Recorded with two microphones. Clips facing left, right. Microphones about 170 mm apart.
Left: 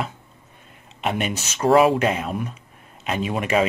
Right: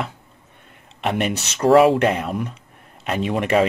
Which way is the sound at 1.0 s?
65° right (ahead or behind).